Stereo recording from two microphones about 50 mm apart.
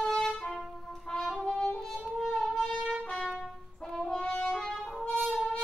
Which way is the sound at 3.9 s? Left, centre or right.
Centre.